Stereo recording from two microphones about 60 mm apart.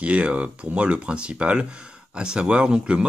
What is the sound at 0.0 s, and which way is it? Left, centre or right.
Speech, right.